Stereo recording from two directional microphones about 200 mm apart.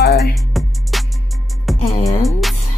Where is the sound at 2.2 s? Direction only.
Centre (ahead or behind).